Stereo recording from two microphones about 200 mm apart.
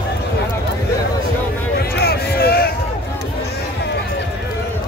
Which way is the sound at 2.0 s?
50° left (ahead or behind).